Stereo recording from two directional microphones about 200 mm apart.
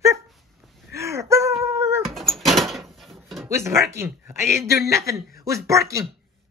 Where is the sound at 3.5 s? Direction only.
15° right (ahead or behind).